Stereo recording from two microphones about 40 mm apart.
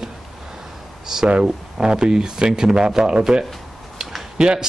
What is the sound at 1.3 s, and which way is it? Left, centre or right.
A man's voice, right.